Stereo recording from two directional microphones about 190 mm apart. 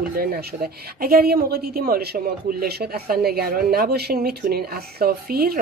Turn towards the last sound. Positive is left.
turn(degrees=-50)  # may be behind; listen again after turning